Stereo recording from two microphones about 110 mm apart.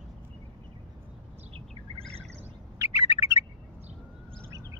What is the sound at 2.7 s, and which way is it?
Bird, 30° right (ahead or behind).